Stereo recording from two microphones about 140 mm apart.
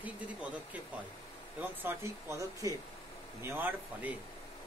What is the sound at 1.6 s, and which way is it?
Speech, 15° right (ahead or behind).